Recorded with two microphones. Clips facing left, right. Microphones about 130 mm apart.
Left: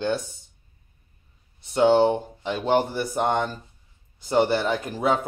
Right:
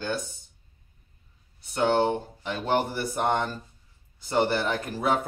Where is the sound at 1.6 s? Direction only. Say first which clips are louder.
Left 5 dB; 20° left (ahead or behind).